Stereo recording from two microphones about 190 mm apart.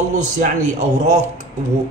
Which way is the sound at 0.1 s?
40° right (ahead or behind).